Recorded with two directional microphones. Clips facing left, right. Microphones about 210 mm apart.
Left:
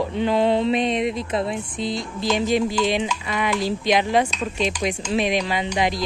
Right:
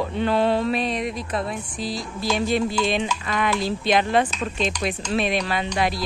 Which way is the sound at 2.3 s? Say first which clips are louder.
Left 2 dB; 15° left (ahead or behind).